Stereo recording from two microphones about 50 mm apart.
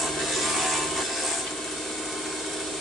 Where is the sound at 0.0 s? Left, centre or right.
Centre.